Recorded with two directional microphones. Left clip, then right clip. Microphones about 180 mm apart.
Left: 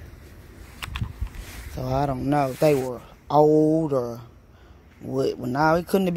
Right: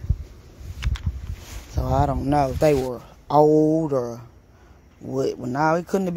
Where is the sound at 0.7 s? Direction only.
30° left (ahead or behind).